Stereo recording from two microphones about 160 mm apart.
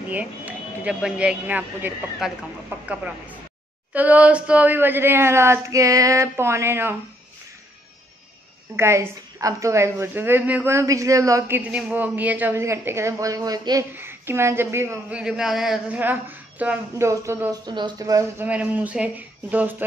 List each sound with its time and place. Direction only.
0.1 s a woman's voice: 10° right (ahead or behind)
2.2 s chicken: 5° right (ahead or behind)
2.9 s a woman's voice: 10° right (ahead or behind)
8.7 s a woman's voice: 15° right (ahead or behind)
18.4 s a woman's voice: 10° right (ahead or behind)